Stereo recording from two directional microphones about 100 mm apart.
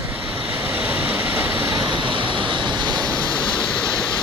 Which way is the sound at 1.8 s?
50° right (ahead or behind).